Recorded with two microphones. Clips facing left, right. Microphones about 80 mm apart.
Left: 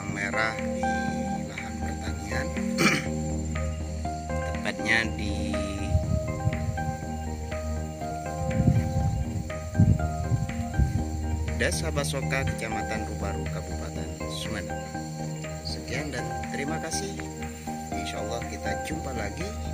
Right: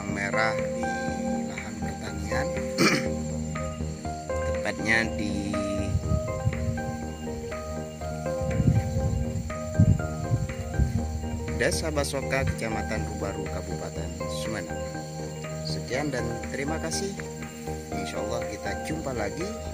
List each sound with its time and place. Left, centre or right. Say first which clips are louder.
0.1 s music: right 3 dB; centre
2.3 s music: right 2 dB; centre
4.3 s music: right 5 dB; centre
11.5 s speech: right 3 dB; centre
15.9 s speech: right 5 dB; right
16.2 s speech: right 1 dB; centre